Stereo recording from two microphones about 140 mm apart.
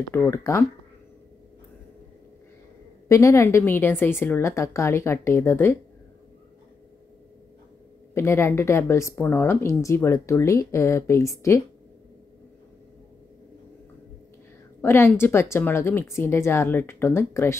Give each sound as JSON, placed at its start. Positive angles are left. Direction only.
{"t": 0.3, "sound": "a woman's voice", "side_deg": 20}
{"t": 3.1, "sound": "a woman's voice", "side_deg": 20}
{"t": 8.1, "sound": "a woman's voice", "side_deg": 20}
{"t": 14.8, "sound": "speech", "side_deg": 15}